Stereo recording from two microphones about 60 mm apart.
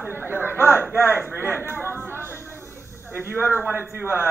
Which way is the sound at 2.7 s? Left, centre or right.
Right.